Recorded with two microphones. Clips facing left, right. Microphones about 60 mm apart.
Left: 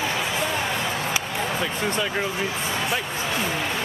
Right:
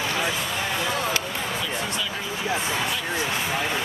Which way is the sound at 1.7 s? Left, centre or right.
Left.